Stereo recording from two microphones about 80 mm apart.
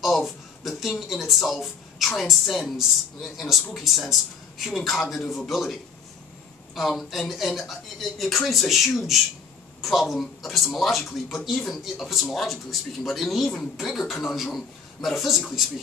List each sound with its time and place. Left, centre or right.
0.0 s a man's voice: centre